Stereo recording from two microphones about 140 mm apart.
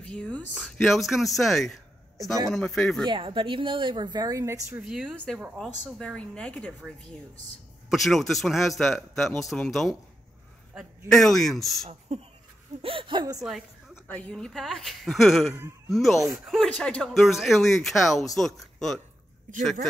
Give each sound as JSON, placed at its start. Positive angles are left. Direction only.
{"t": 0.0, "sound": "speech", "side_deg": 5}
{"t": 3.1, "sound": "a woman's voice", "side_deg": -40}
{"t": 4.8, "sound": "speech", "side_deg": -5}
{"t": 5.6, "sound": "a woman's voice", "side_deg": 5}
{"t": 7.9, "sound": "speech", "side_deg": 0}
{"t": 11.1, "sound": "speech", "side_deg": 0}
{"t": 11.9, "sound": "a woman's voice", "side_deg": -45}
{"t": 13.4, "sound": "speech", "side_deg": 0}
{"t": 14.0, "sound": "speech", "side_deg": 10}